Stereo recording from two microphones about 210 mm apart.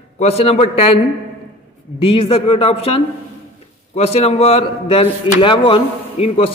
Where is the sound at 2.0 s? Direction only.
25° left (ahead or behind).